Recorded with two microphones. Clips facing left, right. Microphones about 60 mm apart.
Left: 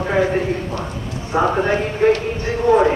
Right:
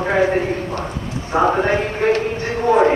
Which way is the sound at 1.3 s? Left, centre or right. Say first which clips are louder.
Right 1 dB; right.